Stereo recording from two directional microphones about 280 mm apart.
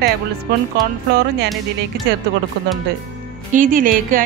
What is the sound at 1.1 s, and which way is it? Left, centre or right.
Speech, right.